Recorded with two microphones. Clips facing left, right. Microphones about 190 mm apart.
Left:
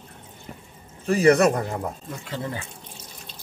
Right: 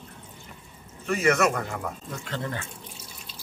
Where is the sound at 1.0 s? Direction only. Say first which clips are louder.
Left 6 dB; 35° left (ahead or behind).